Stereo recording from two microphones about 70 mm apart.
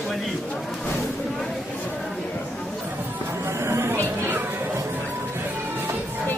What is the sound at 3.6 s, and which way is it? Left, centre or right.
Chatter, right.